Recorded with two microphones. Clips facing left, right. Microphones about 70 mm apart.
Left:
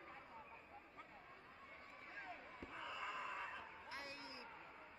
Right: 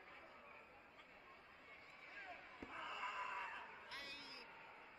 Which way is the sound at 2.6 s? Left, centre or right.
Centre.